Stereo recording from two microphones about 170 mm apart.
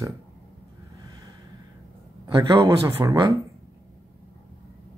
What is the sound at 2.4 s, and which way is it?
Speech, 25° right (ahead or behind).